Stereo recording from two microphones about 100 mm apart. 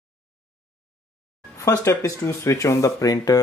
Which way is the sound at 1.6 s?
35° left (ahead or behind).